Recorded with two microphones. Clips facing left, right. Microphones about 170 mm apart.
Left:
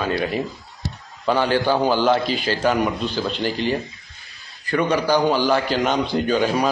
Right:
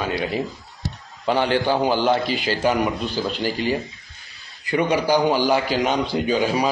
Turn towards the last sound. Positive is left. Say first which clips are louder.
# left 1 dB
turn(degrees=-5)  # may be behind; listen again after turning